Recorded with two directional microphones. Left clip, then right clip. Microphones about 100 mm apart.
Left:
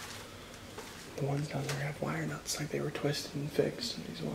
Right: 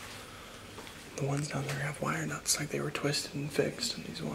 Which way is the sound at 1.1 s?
40° right (ahead or behind).